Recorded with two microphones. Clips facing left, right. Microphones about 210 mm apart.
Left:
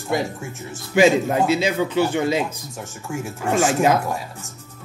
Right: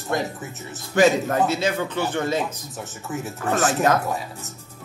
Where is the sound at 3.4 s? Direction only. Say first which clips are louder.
Left 3 dB; 10° left (ahead or behind).